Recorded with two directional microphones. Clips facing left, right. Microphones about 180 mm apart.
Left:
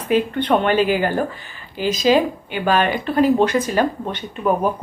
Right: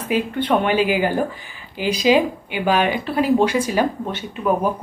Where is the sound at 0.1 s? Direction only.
10° right (ahead or behind).